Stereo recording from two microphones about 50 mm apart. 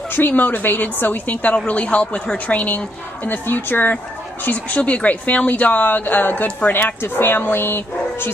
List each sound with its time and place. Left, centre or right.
0.1 s speech: left
3.3 s speech: left
4.5 s speech: left